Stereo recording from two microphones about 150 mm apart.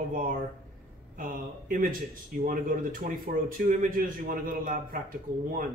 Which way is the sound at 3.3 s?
70° right (ahead or behind).